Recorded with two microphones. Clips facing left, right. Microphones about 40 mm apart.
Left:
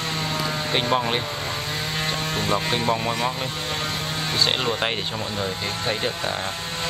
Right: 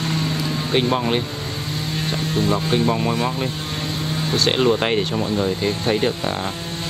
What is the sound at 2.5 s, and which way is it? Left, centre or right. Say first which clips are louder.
Speech: right 2 dB; left.